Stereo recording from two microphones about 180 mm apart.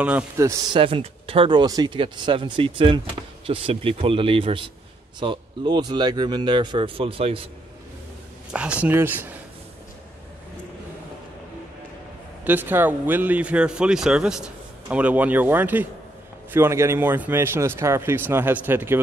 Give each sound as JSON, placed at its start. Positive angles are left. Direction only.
{"t": 0.4, "sound": "speech", "side_deg": -15}
{"t": 0.7, "sound": "speech", "side_deg": -30}
{"t": 8.8, "sound": "speech", "side_deg": -10}
{"t": 12.4, "sound": "speech", "side_deg": -10}